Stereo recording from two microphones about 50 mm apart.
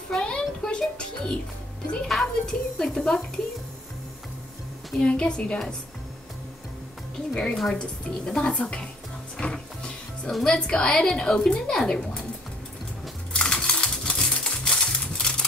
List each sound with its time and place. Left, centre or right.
0.1 s a sound: centre
0.7 s music: centre
2.0 s a child's voice: centre
4.9 s speech: centre
7.3 s a child's voice: centre
9.4 s music: centre
10.4 s a child's voice: centre
13.3 s a sound: centre